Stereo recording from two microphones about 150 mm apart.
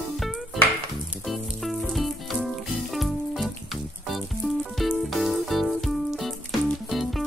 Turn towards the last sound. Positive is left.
turn(degrees=0)  # may be behind; listen again after turning